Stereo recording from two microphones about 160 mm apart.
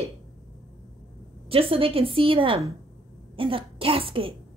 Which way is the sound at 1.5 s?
35° right (ahead or behind).